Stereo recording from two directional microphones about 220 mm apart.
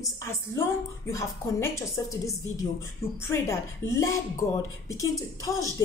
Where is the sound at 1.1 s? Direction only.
15° left (ahead or behind).